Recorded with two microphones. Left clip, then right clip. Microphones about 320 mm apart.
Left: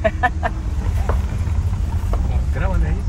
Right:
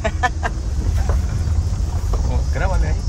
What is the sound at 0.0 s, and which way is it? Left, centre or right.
Vehicle, centre.